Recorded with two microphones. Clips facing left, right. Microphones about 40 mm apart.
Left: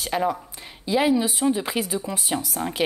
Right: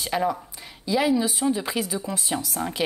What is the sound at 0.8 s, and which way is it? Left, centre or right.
A woman's voice, left.